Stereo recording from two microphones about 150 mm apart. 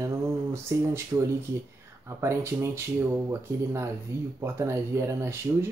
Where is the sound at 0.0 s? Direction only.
20° right (ahead or behind).